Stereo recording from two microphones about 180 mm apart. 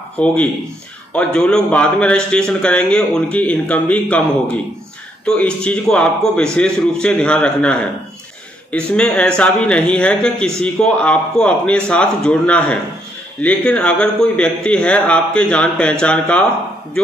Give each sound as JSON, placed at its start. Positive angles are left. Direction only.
{"t": 0.2, "sound": "a man's voice", "side_deg": 5}
{"t": 5.2, "sound": "a man's voice", "side_deg": 5}